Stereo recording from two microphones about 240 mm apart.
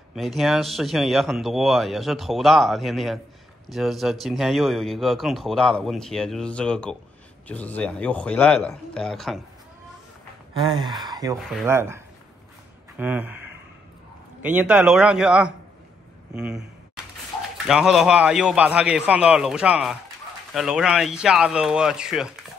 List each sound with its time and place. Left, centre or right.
0.1 s speech: centre
10.6 s gasp: centre
12.9 s speech: centre
17.6 s speech: centre